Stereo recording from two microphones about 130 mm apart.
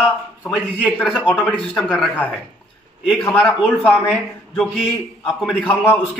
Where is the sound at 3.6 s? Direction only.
15° left (ahead or behind).